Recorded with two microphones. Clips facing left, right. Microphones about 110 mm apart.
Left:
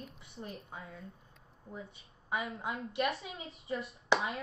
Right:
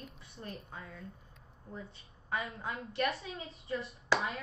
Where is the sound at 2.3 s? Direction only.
10° left (ahead or behind).